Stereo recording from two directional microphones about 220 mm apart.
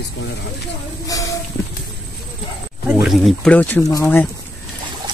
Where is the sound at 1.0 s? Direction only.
15° left (ahead or behind).